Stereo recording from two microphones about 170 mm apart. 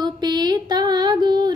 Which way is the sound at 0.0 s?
25° right (ahead or behind).